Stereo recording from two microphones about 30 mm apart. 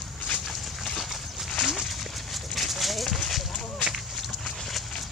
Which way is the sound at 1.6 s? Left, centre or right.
Centre.